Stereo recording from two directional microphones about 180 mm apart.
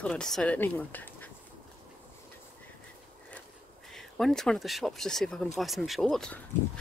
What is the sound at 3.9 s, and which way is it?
Speech, centre (ahead or behind).